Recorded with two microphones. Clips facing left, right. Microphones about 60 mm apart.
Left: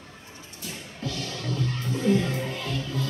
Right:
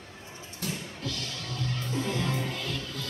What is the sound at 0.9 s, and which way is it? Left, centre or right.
Music, left.